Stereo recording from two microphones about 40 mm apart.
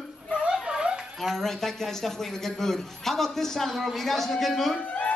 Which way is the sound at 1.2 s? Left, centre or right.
Centre.